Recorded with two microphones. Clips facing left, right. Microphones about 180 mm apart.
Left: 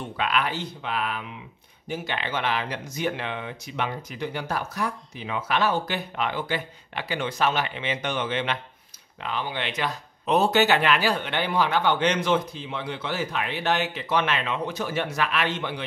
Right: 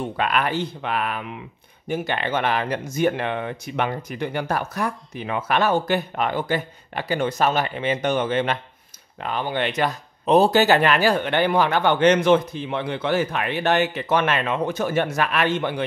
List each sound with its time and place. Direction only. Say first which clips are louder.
0.0 s speech: right 4 dB; 50° right (ahead or behind)